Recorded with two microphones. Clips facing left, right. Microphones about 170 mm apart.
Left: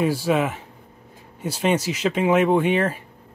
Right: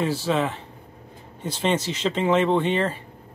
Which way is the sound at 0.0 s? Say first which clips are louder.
Left 3 dB; 10° left (ahead or behind).